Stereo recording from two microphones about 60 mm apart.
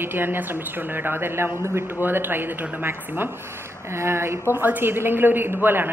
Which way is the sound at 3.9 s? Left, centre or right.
Right.